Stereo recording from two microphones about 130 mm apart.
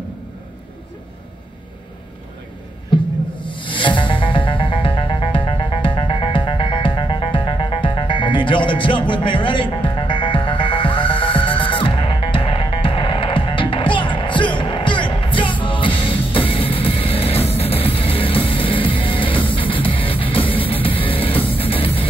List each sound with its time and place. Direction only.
2.9 s music: 40° left (ahead or behind)